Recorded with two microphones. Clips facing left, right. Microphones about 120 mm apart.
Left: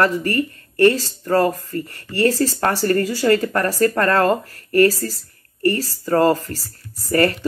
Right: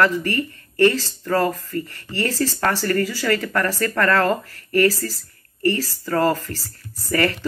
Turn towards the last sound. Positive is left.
turn(degrees=30)  # may be behind; listen again after turning